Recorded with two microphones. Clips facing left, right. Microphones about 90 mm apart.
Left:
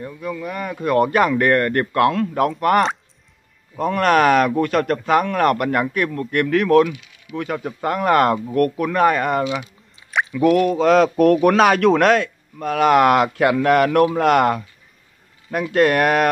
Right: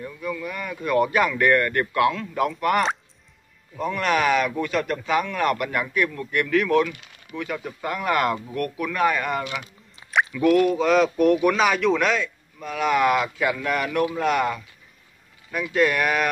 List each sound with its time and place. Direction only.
0.0 s speech: 25° left (ahead or behind)
0.9 s speech: 45° left (ahead or behind)
7.3 s speech: centre (ahead or behind)
7.6 s speech: 45° left (ahead or behind)
9.4 s speech: 20° left (ahead or behind)
10.8 s a man's voice: 45° left (ahead or behind); by 14.6 s 60° left (ahead or behind)
15.7 s a man's voice: 55° left (ahead or behind)